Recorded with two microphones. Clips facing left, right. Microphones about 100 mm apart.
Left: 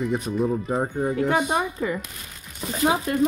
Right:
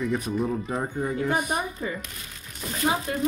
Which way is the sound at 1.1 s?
90° left.